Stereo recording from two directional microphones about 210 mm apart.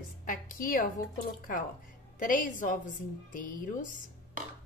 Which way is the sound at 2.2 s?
40° left (ahead or behind).